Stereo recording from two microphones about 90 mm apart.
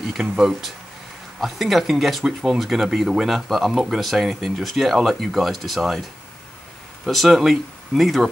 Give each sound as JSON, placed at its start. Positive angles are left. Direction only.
{"t": 0.0, "sound": "speech", "side_deg": -5}
{"t": 7.1, "sound": "speech", "side_deg": 0}